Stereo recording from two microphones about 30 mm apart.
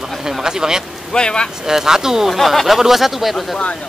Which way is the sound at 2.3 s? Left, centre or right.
Centre.